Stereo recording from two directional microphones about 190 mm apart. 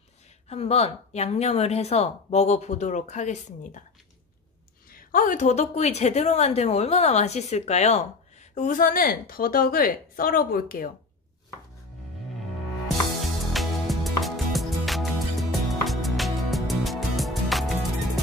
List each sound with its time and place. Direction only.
0.5 s a woman's voice: 35° left (ahead or behind)
4.9 s a woman's voice: 45° left (ahead or behind)
13.2 s music: centre (ahead or behind)